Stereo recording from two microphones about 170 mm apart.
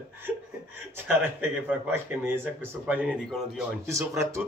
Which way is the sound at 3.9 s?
20° right (ahead or behind).